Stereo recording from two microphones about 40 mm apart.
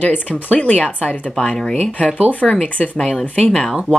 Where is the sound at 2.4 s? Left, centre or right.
Left.